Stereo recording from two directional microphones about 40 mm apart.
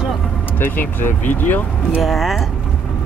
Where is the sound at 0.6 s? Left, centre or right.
Left.